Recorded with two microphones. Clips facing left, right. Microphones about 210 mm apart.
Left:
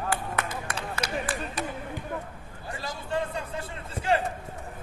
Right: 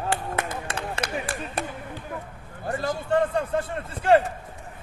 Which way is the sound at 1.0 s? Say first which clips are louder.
Right 1 dB; 55° right (ahead or behind).